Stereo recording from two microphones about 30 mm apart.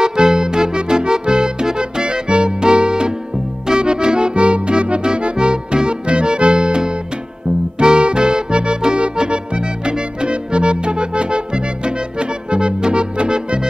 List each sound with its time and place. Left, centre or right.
0.0 s music: right